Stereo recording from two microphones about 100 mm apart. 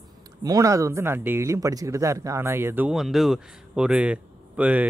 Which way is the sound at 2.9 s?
Centre (ahead or behind).